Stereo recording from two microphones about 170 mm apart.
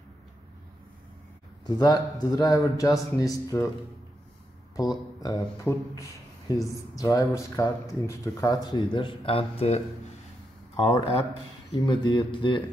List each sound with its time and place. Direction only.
1.8 s speech: 20° left (ahead or behind)
4.7 s speech: 20° left (ahead or behind)
10.8 s speech: 25° left (ahead or behind)